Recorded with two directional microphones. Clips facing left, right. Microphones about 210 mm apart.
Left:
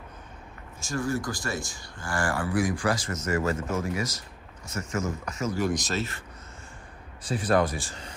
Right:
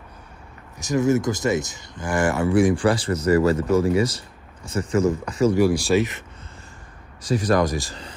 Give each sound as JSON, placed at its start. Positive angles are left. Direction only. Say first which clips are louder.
{"t": 0.8, "sound": "speech", "louder": "right 9 dB", "side_deg": -20}
{"t": 5.6, "sound": "speech", "louder": "right 9 dB", "side_deg": -10}
{"t": 7.2, "sound": "speech", "louder": "right 4 dB", "side_deg": -40}